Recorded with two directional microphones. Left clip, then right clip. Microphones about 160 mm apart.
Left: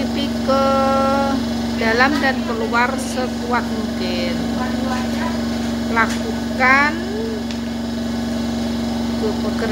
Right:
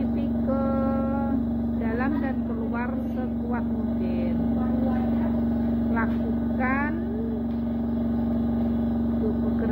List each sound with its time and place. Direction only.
1.9 s speech: 20° left (ahead or behind)
6.6 s speech: 15° left (ahead or behind)